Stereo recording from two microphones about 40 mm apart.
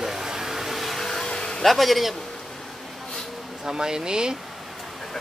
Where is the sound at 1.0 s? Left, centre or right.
Centre.